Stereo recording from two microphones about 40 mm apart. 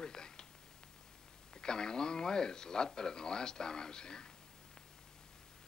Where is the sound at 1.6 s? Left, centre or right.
Centre.